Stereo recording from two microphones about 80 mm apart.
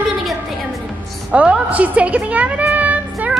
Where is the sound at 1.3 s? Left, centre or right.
Centre.